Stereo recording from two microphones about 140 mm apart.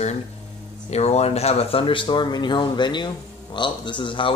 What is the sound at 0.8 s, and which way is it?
Speech, 50° left (ahead or behind).